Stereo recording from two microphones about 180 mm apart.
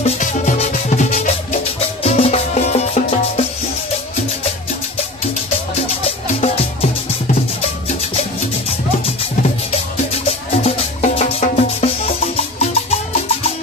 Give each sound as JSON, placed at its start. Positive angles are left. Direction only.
{"t": 0.0, "sound": "music", "side_deg": 40}
{"t": 6.4, "sound": "music", "side_deg": 35}
{"t": 10.5, "sound": "music", "side_deg": 40}